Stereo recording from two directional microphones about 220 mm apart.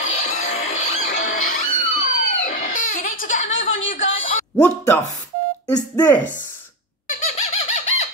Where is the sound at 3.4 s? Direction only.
60° left (ahead or behind).